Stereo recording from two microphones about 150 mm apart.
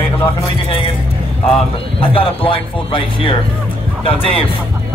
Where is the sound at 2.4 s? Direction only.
35° left (ahead or behind).